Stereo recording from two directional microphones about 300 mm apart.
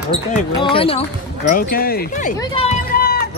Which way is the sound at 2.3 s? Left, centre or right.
Centre.